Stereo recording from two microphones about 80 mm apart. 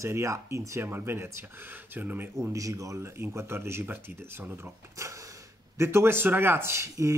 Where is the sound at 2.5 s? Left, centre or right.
Right.